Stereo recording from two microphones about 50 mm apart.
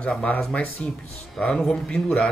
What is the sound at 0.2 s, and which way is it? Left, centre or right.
Speech, left.